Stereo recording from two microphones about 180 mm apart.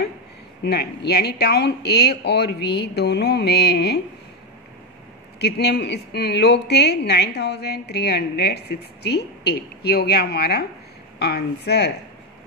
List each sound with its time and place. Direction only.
0.7 s a woman's voice: 65° left (ahead or behind)
5.4 s a woman's voice: 65° left (ahead or behind)